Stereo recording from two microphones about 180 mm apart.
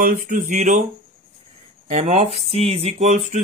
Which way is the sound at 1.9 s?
40° right (ahead or behind).